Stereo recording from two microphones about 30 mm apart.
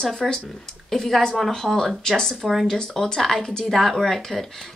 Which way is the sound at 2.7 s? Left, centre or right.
Centre.